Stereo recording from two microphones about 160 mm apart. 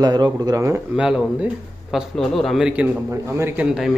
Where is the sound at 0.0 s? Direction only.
25° right (ahead or behind).